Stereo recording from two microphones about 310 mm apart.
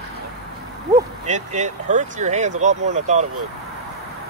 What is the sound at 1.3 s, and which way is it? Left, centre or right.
Speech, right.